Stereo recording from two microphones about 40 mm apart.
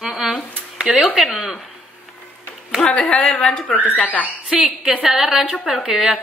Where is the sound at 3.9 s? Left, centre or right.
Left.